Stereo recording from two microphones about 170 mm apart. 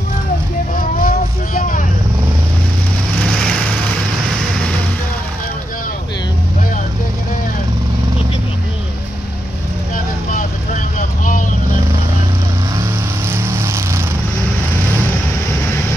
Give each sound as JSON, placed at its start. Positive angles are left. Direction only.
{"t": 0.7, "sound": "vehicle", "side_deg": 55}
{"t": 3.3, "sound": "vehicle", "side_deg": 5}
{"t": 10.3, "sound": "vehicle", "side_deg": 50}
{"t": 12.7, "sound": "vehicle", "side_deg": -15}